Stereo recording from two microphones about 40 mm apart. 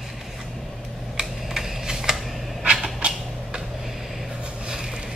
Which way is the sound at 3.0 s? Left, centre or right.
Right.